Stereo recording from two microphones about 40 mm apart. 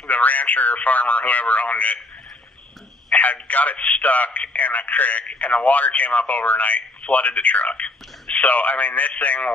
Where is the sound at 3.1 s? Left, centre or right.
Left.